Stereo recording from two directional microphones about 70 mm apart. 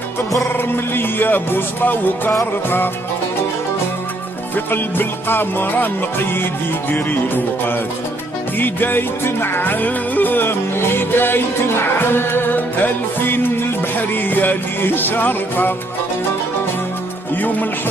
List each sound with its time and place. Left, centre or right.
0.9 s music: left
4.6 s music: left
6.9 s music: left